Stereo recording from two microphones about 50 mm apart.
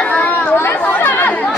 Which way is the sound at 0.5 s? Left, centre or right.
Left.